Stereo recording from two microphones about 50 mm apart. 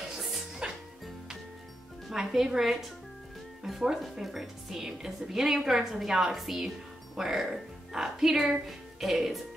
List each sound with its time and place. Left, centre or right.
0.6 s music: centre
2.0 s a woman's voice: centre